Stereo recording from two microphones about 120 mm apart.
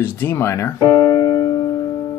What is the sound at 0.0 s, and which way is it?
Speech, 20° left (ahead or behind).